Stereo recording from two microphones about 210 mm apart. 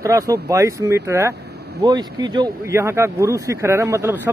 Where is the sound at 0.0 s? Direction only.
15° right (ahead or behind).